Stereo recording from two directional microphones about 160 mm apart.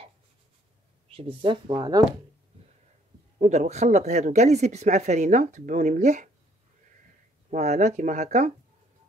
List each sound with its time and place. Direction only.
1.1 s speech: 35° right (ahead or behind)
3.3 s speech: 45° right (ahead or behind)
7.5 s speech: 45° right (ahead or behind)